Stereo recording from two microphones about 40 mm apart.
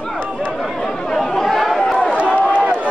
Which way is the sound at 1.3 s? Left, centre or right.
Centre.